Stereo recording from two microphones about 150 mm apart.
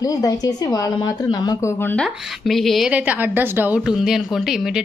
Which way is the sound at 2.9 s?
10° right (ahead or behind).